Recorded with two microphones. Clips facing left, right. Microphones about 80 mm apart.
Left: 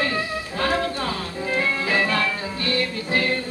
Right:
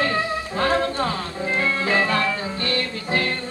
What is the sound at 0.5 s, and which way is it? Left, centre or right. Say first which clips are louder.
Music: right 2 dB; right.